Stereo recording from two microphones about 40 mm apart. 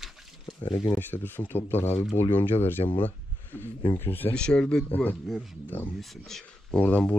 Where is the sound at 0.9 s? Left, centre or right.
Left.